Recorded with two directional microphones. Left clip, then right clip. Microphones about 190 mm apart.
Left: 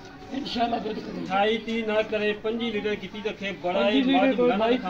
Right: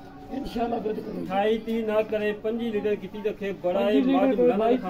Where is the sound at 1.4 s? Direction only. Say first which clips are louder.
Right 1 dB; 40° right (ahead or behind).